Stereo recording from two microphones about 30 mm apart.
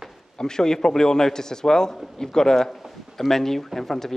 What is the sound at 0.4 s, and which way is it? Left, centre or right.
A man's voice, left.